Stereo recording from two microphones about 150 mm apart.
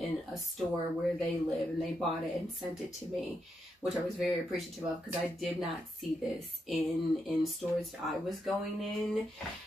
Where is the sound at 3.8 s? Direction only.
Centre (ahead or behind).